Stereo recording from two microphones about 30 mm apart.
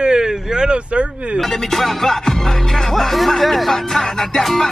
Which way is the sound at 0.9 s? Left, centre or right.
Right.